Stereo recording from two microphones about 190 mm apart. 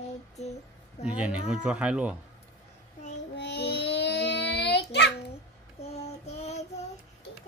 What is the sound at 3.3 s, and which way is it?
Child singing, 65° left (ahead or behind).